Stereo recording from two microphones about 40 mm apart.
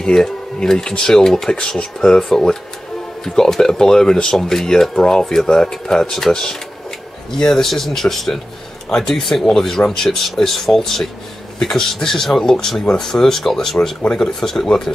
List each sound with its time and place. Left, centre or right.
0.0 s speech: centre